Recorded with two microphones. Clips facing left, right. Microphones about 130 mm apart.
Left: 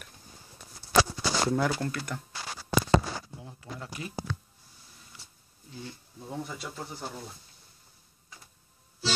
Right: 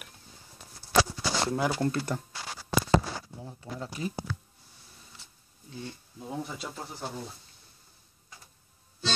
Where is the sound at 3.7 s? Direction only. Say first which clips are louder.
Right 5 dB; 30° right (ahead or behind).